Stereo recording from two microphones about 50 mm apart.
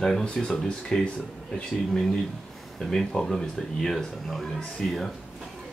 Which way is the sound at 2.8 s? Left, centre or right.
Centre.